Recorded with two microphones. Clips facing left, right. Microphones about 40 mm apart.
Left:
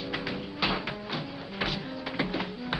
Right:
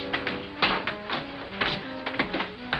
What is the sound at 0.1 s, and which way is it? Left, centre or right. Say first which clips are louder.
Music: right 4 dB; right.